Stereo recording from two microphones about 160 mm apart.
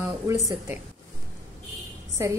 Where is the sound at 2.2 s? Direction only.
20° right (ahead or behind).